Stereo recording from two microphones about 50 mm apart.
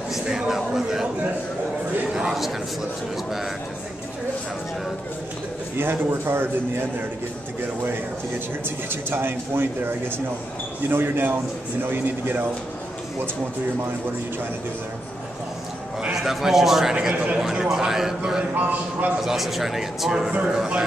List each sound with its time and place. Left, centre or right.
0.1 s a sound: centre
0.6 s a man's voice: centre
2.3 s a man's voice: centre
5.8 s speech: right
8.6 s a man's voice: right
16.2 s a man's voice: centre
16.9 s a man's voice: right
17.4 s a man's voice: centre
18.5 s a man's voice: right
19.2 s a man's voice: centre
20.2 s a man's voice: right